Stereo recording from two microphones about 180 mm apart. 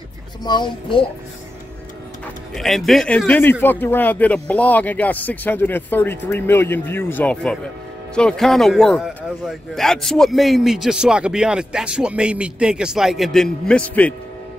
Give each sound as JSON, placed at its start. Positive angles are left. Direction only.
{"t": 0.4, "sound": "speech", "side_deg": 25}
{"t": 2.5, "sound": "a man's voice", "side_deg": 0}